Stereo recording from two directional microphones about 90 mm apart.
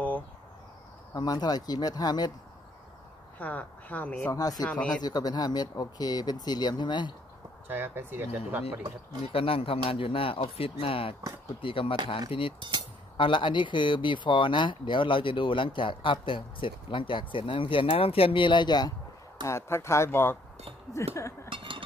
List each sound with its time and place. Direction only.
1.1 s speech: 50° left (ahead or behind)
3.3 s speech: 20° left (ahead or behind)
4.3 s speech: 45° left (ahead or behind)
7.6 s speech: 25° right (ahead or behind)
9.2 s speech: 90° left
11.6 s speech: 80° left
13.2 s speech: 65° left (ahead or behind)
19.4 s speech: 30° left (ahead or behind)
21.5 s chink: 70° right (ahead or behind)